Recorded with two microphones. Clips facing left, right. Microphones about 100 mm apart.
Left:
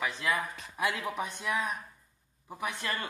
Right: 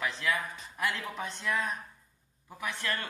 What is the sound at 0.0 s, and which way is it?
A man's voice, 15° left (ahead or behind).